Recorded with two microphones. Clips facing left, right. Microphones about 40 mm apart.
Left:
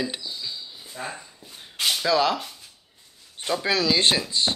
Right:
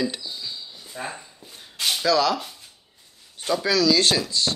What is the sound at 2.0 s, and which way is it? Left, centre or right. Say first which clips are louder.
Speech: right 2 dB; left.